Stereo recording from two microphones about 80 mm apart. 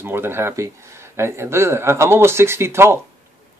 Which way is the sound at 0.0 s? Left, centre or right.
Right.